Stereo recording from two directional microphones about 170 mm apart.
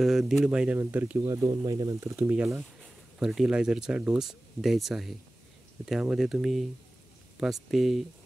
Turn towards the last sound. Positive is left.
turn(degrees=0)  # may be behind; listen again after turning